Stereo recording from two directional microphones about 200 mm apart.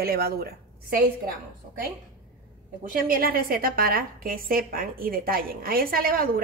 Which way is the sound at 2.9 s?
45° right (ahead or behind).